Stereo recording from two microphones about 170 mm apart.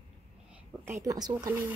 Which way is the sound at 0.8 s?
15° right (ahead or behind).